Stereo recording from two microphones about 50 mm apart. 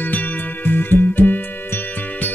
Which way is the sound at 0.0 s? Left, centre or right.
Left.